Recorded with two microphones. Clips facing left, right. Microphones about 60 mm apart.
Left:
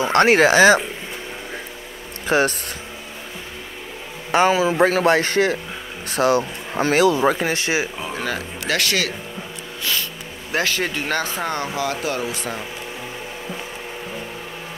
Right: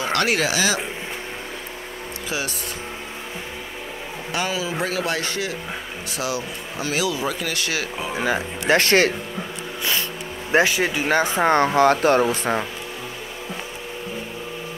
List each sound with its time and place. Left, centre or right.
0.0 s speech: left
2.2 s speech: left
4.3 s speech: left
8.0 s speech: centre
8.4 s speech: right
10.5 s speech: centre
10.8 s speech: centre
11.1 s speech: right
11.5 s speech: right